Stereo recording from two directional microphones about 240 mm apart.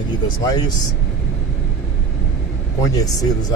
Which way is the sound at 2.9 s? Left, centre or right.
Centre.